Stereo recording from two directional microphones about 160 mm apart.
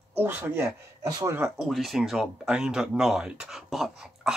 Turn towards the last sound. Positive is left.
turn(degrees=-5)  # may be behind; listen again after turning